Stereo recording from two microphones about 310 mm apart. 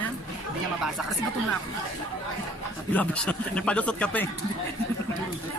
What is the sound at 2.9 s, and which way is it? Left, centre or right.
Speech, centre.